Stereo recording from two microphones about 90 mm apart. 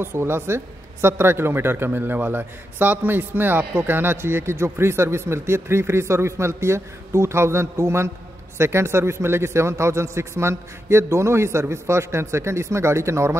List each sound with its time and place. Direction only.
0.0 s a man's voice: 25° right (ahead or behind)